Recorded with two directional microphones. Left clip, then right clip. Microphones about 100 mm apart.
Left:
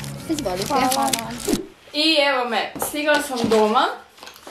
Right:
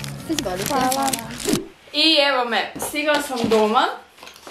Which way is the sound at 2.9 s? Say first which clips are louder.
Left 1 dB; 10° left (ahead or behind).